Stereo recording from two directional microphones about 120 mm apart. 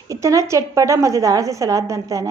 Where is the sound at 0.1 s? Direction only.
25° right (ahead or behind).